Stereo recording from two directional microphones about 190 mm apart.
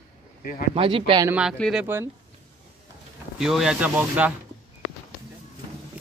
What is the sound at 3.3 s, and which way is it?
Speech, 5° right (ahead or behind).